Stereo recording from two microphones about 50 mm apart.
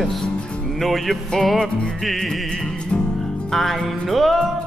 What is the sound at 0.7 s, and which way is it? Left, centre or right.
Music, centre.